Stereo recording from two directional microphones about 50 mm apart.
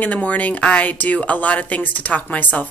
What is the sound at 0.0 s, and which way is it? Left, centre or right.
A woman's voice, left.